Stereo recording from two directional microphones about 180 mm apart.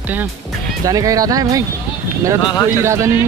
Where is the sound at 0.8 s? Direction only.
20° right (ahead or behind).